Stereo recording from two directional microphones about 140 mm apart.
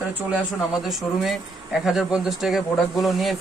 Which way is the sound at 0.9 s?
Centre (ahead or behind).